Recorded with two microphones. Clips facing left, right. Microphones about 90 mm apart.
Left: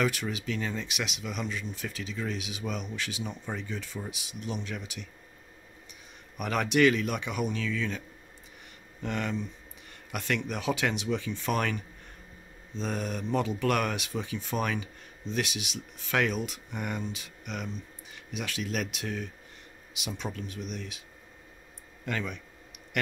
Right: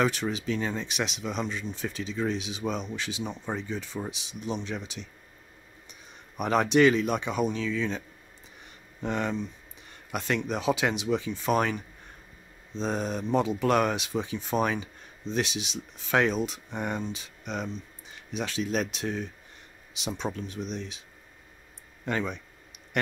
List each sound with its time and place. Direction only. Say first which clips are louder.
0.0 s speech: right 3 dB; 30° right (ahead or behind)
6.3 s speech: right 4 dB; 30° right (ahead or behind)
9.0 s speech: right 3 dB; 20° right (ahead or behind)
22.0 s speech: right 4 dB; 30° right (ahead or behind)